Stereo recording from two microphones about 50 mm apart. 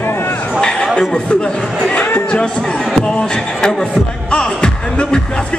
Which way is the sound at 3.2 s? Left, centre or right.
Centre.